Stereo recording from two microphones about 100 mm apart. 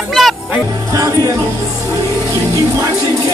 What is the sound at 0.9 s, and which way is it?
Music, 35° right (ahead or behind).